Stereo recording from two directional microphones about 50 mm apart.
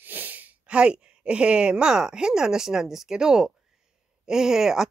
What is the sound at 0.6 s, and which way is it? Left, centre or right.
A woman's voice, right.